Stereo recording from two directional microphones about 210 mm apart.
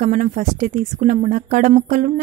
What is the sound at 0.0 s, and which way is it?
A woman's voice, 40° right (ahead or behind).